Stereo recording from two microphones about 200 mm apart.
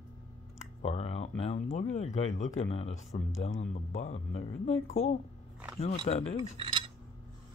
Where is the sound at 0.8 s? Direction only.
30° left (ahead or behind).